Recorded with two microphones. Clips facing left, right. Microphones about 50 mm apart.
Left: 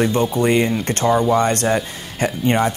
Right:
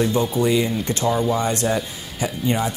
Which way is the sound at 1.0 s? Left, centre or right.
Left.